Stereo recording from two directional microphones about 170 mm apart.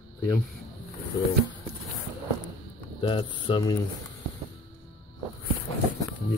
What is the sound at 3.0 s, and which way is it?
Speech, 30° left (ahead or behind).